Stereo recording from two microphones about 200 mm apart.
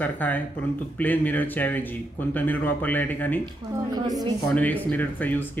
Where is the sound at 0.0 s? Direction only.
10° left (ahead or behind).